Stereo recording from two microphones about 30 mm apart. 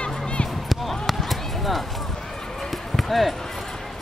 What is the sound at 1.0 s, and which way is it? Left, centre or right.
Basketball bounce, centre.